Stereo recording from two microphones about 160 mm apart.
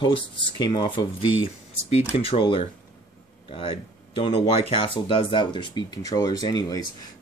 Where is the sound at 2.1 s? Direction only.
35° left (ahead or behind).